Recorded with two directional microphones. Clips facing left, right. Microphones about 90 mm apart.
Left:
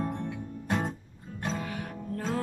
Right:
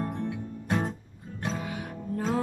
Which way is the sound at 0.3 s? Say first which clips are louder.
Right 2 dB; centre (ahead or behind).